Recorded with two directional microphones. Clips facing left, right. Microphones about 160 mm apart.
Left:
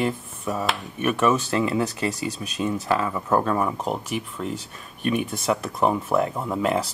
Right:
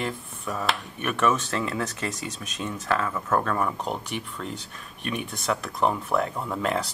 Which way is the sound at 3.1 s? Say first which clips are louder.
Left 3 dB; 15° left (ahead or behind).